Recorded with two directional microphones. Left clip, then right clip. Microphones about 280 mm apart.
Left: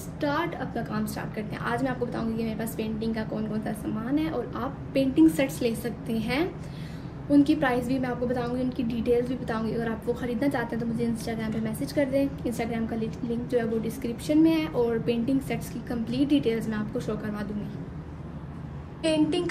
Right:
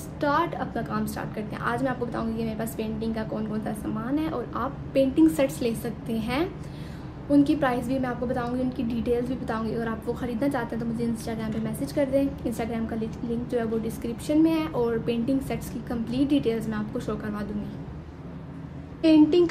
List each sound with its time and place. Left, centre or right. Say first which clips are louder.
0.2 s a woman's voice: right 4 dB; centre
19.0 s a woman's voice: right 6 dB; right